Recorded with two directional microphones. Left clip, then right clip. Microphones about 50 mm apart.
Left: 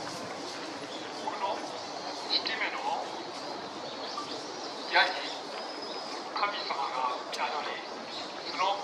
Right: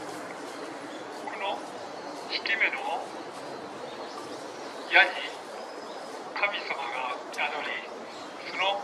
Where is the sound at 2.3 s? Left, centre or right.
Right.